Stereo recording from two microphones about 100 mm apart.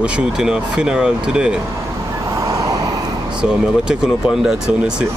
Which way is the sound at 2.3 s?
35° right (ahead or behind).